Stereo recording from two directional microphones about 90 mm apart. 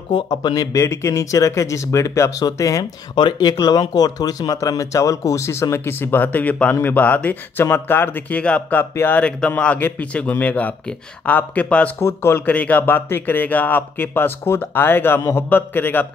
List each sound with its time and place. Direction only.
0.1 s speech: 55° left (ahead or behind)
0.7 s speech: 35° left (ahead or behind)
3.2 s a man's voice: 55° left (ahead or behind); by 11.9 s 15° left (ahead or behind)
12.0 s speech: 30° left (ahead or behind)
12.4 s speech: 15° left (ahead or behind)